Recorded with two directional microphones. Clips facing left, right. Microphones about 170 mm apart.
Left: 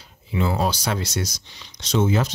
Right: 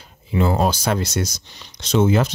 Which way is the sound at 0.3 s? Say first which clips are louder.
Right 4 dB; 50° right (ahead or behind).